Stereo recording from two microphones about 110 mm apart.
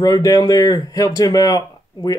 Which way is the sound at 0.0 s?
35° left (ahead or behind).